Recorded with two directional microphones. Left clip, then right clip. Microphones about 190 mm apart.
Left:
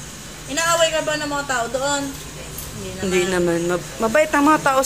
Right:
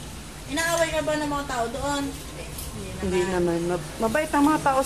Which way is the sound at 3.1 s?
5° left (ahead or behind).